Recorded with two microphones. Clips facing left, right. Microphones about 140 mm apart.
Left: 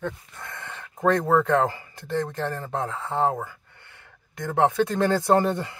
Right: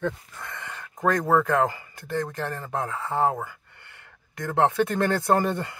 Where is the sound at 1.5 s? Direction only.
25° left (ahead or behind).